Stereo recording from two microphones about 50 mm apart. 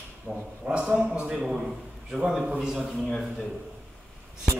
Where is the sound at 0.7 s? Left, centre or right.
Right.